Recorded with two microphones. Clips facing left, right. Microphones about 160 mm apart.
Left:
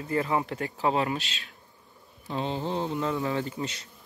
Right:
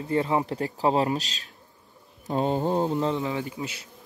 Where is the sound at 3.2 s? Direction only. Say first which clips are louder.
Even; 15° right (ahead or behind).